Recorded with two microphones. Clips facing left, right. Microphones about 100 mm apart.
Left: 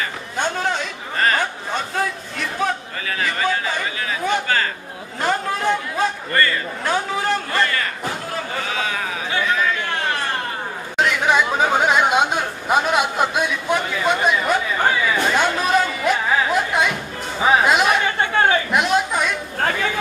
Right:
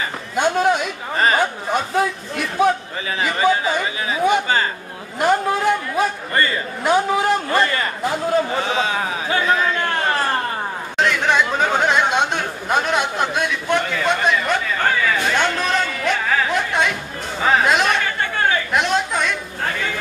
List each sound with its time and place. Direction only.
0.4 s a man's voice: 15° right (ahead or behind)
9.3 s a sound: 35° right (ahead or behind)
11.0 s speech: 5° left (ahead or behind)
15.3 s a sound: 5° left (ahead or behind)
17.4 s speech: 10° left (ahead or behind)
18.7 s chatter: 5° left (ahead or behind)